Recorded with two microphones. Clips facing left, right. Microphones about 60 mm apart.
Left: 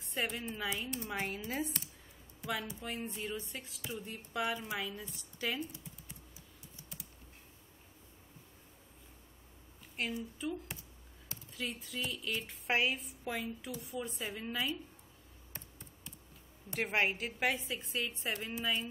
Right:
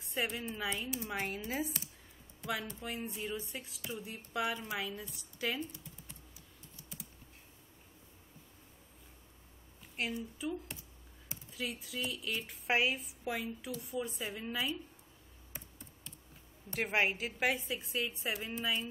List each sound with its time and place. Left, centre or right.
0.0 s a woman's voice: centre
10.0 s a woman's voice: centre
16.7 s a woman's voice: centre